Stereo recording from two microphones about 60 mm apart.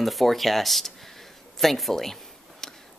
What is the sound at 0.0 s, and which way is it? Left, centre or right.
Speech, centre.